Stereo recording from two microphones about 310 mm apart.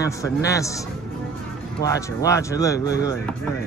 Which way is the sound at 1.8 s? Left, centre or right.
Centre.